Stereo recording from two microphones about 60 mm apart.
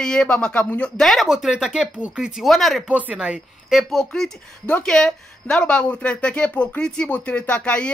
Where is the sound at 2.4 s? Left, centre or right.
Centre.